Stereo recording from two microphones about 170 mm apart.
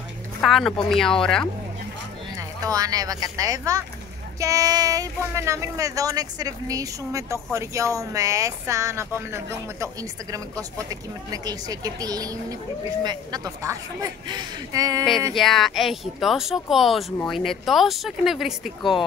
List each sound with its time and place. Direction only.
0.4 s speech: centre (ahead or behind)
2.6 s speech: 20° right (ahead or behind)
15.3 s speech: centre (ahead or behind)